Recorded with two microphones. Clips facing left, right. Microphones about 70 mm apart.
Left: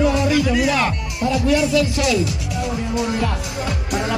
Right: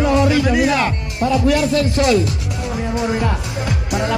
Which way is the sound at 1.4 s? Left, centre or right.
Right.